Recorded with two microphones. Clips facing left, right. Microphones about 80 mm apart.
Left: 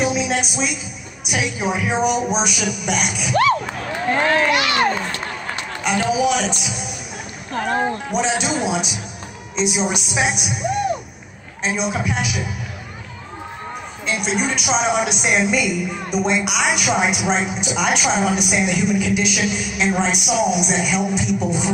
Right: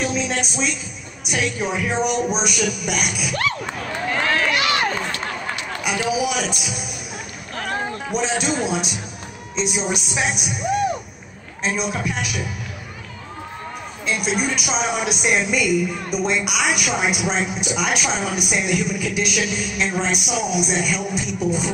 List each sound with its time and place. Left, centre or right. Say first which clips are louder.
0.0 s music: left 3 dB; centre
1.2 s speech: left 1 dB; centre
4.1 s a sound: left 4 dB; left
5.9 s speech: left 4 dB; centre
7.5 s a sound: left 6 dB; left
8.1 s speech: left 2 dB; centre
14.0 s speech: left 1 dB; centre